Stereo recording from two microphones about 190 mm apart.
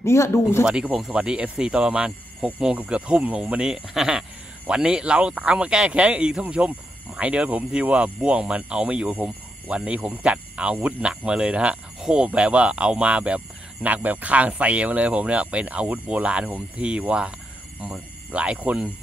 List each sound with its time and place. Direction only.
0.0 s speech: 15° left (ahead or behind)
0.7 s speech: 5° right (ahead or behind)